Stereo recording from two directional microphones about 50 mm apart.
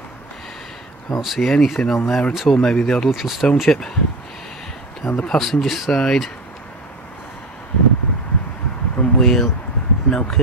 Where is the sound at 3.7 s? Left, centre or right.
Centre.